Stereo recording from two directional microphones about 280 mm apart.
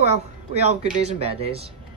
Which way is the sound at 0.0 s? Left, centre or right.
Right.